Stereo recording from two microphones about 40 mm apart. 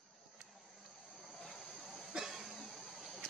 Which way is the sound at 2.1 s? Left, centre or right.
Right.